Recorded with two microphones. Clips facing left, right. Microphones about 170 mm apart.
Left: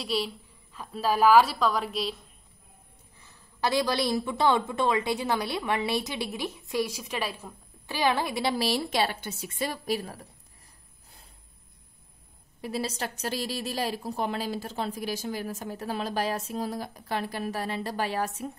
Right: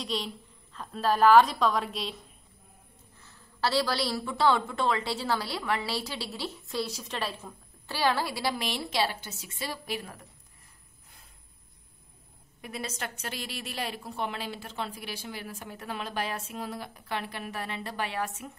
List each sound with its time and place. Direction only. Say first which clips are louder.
0.0 s a woman's voice: left 4 dB; 5° left (ahead or behind)
3.2 s a woman's voice: even; 15° left (ahead or behind)
8.6 s a woman's voice: left 4 dB; 40° left (ahead or behind)
9.0 s a woman's voice: left 2 dB; 55° left (ahead or behind); by 10.2 s 35° left (ahead or behind)
12.6 s a woman's voice: left 5 dB; 35° left (ahead or behind)